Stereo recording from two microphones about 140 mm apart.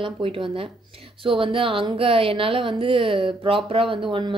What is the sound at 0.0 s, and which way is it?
A woman's voice, 40° right (ahead or behind).